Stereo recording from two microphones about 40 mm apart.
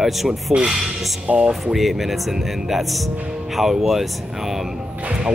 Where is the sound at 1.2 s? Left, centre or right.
Right.